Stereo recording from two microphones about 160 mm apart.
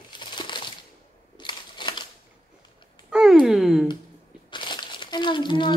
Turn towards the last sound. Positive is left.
turn(degrees=30)  # may be behind; listen again after turning